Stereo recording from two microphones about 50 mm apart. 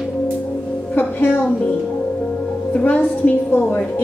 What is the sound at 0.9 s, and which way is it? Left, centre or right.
Music, left.